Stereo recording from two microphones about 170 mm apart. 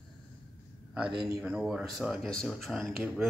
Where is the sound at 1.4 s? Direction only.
5° right (ahead or behind).